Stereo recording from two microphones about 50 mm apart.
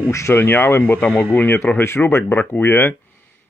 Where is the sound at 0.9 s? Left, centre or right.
Left.